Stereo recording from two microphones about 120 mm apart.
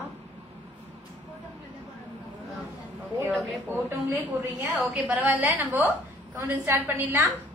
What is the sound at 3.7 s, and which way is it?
A woman's voice, 15° right (ahead or behind).